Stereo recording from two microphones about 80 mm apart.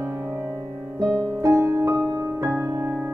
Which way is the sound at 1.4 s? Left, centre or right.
Right.